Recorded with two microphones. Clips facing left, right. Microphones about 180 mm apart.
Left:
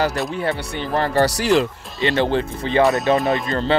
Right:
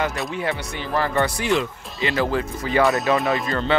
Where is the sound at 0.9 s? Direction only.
35° left (ahead or behind).